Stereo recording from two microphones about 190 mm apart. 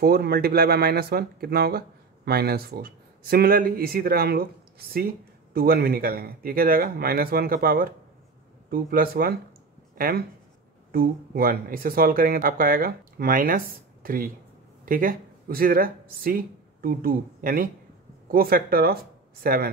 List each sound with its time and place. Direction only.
0.0 s speech: 55° right (ahead or behind)